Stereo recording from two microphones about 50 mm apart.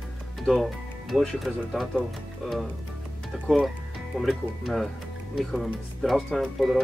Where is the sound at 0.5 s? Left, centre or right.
Centre.